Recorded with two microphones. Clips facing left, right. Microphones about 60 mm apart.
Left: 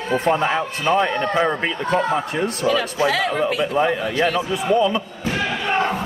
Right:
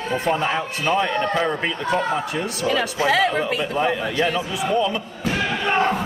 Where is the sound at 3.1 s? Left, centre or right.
Right.